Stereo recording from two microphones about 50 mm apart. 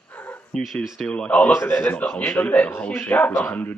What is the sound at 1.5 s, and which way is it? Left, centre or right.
Speech, left.